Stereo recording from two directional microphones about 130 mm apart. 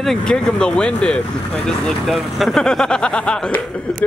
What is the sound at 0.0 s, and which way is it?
Speech, 5° left (ahead or behind).